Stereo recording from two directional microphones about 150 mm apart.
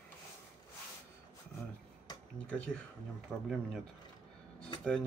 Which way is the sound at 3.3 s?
5° right (ahead or behind).